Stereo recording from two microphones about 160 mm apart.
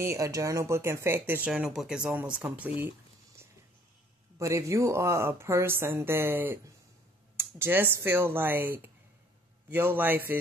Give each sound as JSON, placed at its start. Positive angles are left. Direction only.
{"t": 0.0, "sound": "speech", "side_deg": -20}
{"t": 4.4, "sound": "speech", "side_deg": -20}